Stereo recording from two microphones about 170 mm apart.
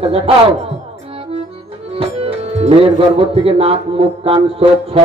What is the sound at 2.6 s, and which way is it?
Speech, 35° right (ahead or behind).